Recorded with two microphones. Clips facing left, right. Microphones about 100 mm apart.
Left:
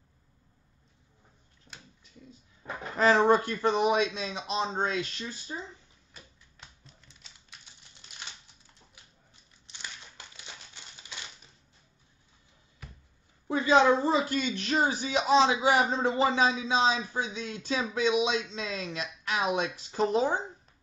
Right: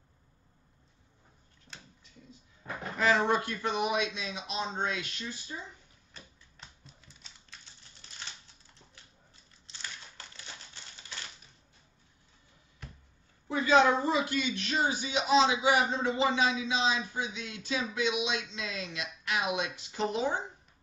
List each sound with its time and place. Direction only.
3.0 s speech: 40° left (ahead or behind)
6.1 s typewriter: centre (ahead or behind)
8.9 s crumpling: 15° left (ahead or behind)
13.5 s speech: 30° left (ahead or behind)